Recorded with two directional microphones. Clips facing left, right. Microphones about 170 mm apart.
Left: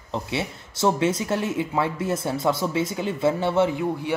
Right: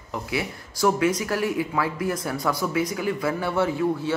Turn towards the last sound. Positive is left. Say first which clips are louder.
# right 1 dB
turn(degrees=20)  # may be behind; listen again after turning